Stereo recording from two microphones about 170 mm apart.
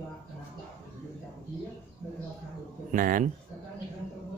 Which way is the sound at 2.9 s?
50° right (ahead or behind).